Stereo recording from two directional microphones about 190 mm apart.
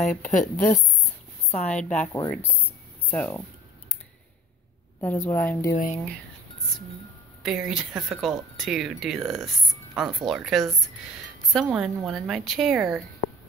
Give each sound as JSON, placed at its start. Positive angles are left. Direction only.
{"t": 0.2, "sound": "a woman's voice", "side_deg": 40}
{"t": 2.2, "sound": "speech", "side_deg": 10}
{"t": 5.0, "sound": "a woman's voice", "side_deg": 10}
{"t": 7.4, "sound": "speech", "side_deg": -5}